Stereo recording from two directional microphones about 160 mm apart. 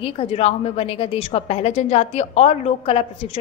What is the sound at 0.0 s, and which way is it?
A woman's voice, 40° left (ahead or behind).